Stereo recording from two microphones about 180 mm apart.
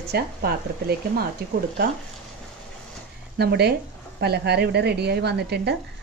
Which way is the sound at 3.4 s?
65° right (ahead or behind).